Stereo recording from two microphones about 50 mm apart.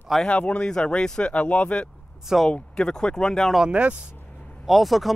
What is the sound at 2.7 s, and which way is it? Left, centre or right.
Speech, centre.